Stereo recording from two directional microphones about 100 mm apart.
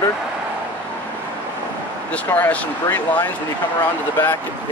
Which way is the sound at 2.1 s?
15° left (ahead or behind).